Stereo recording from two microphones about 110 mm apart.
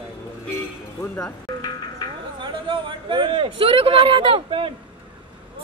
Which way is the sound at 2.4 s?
45° right (ahead or behind).